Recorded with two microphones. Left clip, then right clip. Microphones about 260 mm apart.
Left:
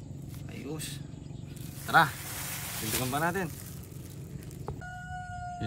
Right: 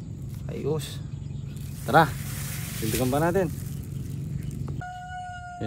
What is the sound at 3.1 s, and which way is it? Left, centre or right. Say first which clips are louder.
Speech: right 7 dB; centre.